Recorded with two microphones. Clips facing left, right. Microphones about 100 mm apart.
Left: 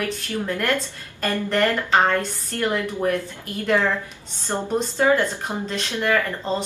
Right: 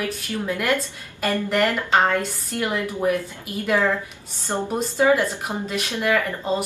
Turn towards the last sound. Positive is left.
turn(degrees=-10)  # may be behind; listen again after turning